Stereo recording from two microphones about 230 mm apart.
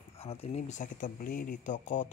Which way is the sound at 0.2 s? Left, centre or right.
Left.